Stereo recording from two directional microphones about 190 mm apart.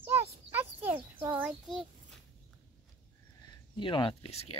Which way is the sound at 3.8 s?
25° left (ahead or behind).